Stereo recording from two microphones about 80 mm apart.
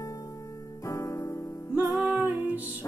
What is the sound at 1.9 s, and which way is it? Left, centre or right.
Music, centre.